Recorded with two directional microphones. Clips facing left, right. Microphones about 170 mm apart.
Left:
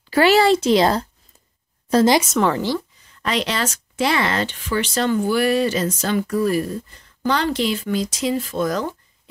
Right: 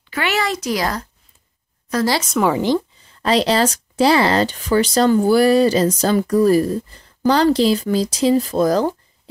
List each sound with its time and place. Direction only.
0.1 s speech: 35° left (ahead or behind)
2.1 s a woman's voice: 5° left (ahead or behind)
2.4 s speech: 15° right (ahead or behind)
3.2 s speech: 35° right (ahead or behind)